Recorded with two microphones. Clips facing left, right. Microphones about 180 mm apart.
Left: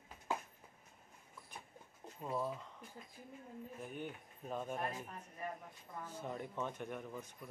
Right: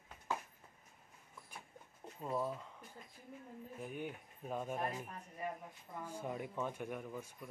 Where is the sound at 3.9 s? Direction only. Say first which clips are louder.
Right 1 dB; 5° right (ahead or behind).